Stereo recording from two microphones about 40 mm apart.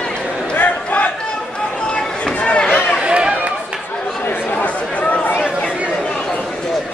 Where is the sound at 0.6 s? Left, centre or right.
Left.